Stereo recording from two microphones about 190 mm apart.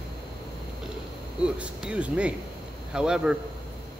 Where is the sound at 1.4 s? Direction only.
5° right (ahead or behind).